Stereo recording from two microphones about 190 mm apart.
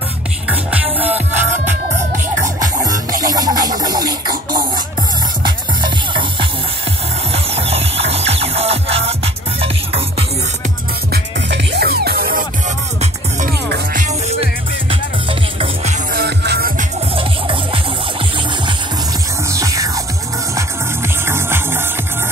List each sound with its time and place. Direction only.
0.5 s music: 5° right (ahead or behind)
1.3 s music: 40° right (ahead or behind)
3.2 s scratch: 20° right (ahead or behind)
5.4 s music: 25° right (ahead or behind)
11.1 s music: 60° right (ahead or behind)
13.9 s music: 35° right (ahead or behind)
16.1 s music: 55° right (ahead or behind)
17.1 s music: 25° right (ahead or behind)
19.5 s music: 20° right (ahead or behind)
21.3 s music: 10° right (ahead or behind)